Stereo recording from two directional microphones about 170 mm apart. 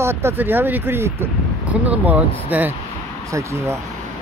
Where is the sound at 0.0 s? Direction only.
15° right (ahead or behind).